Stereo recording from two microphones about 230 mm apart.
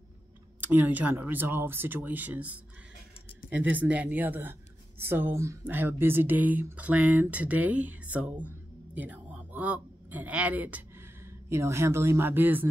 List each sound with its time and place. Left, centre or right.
0.6 s a woman's voice: centre